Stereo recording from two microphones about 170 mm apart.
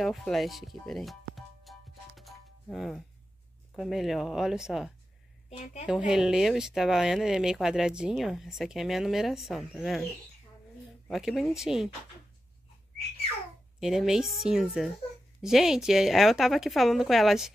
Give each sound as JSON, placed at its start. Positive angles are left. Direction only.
{"t": 0.0, "sound": "music", "side_deg": 0}
{"t": 3.7, "sound": "speech", "side_deg": 0}
{"t": 5.6, "sound": "a woman's voice", "side_deg": 40}
{"t": 5.9, "sound": "speech", "side_deg": -5}
{"t": 11.1, "sound": "speech", "side_deg": 0}
{"t": 13.7, "sound": "speech", "side_deg": -5}